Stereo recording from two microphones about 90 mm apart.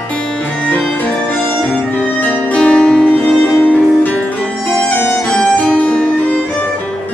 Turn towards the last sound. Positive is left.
turn(degrees=20)  # may be behind; listen again after turning